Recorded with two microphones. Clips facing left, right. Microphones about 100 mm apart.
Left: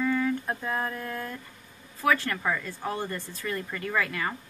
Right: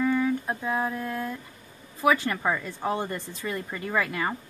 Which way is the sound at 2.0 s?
15° right (ahead or behind).